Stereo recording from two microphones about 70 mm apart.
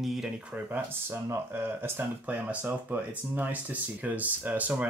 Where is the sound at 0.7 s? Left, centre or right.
Right.